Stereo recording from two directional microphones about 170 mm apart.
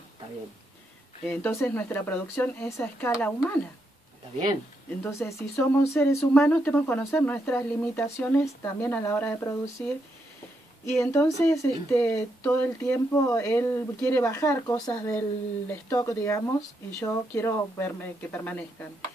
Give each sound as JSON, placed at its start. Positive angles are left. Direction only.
{"t": 1.2, "sound": "speech", "side_deg": 10}
{"t": 5.0, "sound": "speech", "side_deg": 15}
{"t": 10.9, "sound": "speech", "side_deg": 15}